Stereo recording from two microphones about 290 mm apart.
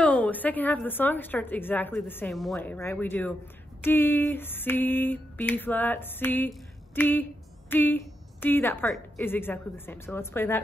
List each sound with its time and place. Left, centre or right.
0.0 s a woman's voice: centre